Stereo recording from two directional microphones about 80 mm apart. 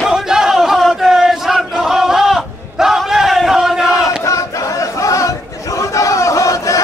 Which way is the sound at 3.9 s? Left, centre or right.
Left.